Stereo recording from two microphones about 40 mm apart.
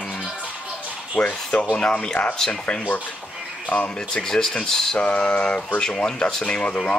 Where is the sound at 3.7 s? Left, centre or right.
Left.